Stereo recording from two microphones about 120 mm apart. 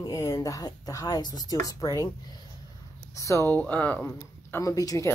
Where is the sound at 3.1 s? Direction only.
25° left (ahead or behind).